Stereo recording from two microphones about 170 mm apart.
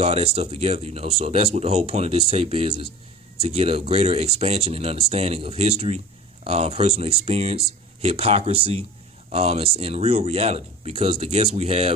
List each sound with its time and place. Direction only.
0.0 s speech: 40° right (ahead or behind)